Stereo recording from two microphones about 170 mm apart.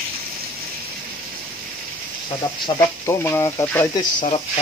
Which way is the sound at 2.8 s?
15° left (ahead or behind).